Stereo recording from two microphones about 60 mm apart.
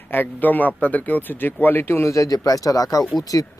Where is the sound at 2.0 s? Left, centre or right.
Left.